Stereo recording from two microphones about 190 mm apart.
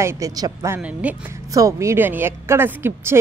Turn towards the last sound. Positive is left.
turn(degrees=-10)  # may be behind; listen again after turning